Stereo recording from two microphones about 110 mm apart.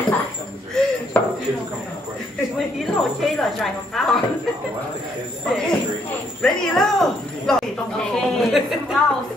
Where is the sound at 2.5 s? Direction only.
Centre (ahead or behind).